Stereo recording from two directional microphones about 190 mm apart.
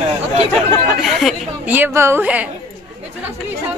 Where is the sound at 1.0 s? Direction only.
Centre (ahead or behind).